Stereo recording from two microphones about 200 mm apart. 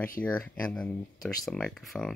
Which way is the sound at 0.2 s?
5° left (ahead or behind).